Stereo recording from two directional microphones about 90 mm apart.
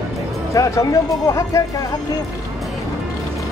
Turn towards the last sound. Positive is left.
turn(degrees=35)  # may be behind; listen again after turning